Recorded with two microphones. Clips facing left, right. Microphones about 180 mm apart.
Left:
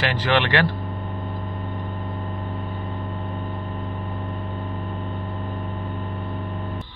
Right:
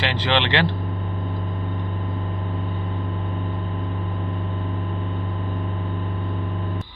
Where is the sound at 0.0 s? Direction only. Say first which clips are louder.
Left 1 dB; 20° right (ahead or behind).